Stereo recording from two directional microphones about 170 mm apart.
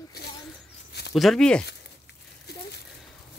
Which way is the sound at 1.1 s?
Centre (ahead or behind).